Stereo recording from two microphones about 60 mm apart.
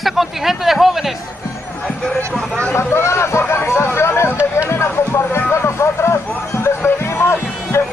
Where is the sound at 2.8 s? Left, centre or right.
Left.